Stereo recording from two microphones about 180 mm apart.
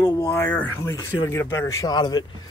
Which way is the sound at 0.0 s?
20° left (ahead or behind).